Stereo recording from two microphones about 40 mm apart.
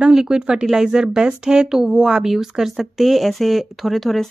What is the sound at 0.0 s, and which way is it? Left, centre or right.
Speech, centre.